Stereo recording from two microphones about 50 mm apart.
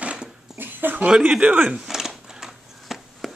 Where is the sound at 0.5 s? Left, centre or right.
Right.